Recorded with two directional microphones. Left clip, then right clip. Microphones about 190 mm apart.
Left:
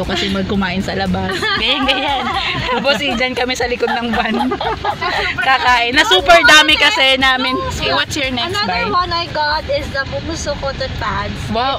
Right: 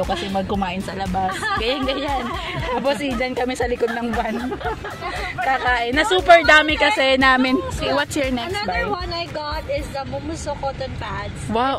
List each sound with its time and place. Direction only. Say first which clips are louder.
1.6 s speech: left 7 dB; 25° right (ahead or behind)
5.5 s speech: left 7 dB; 25° right (ahead or behind)
8.5 s speech: left 10 dB; 15° right (ahead or behind)